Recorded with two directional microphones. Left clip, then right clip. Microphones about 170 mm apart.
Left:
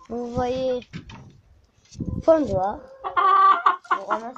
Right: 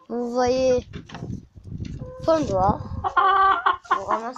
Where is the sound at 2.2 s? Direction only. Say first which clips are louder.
Left 3 dB; 20° left (ahead or behind).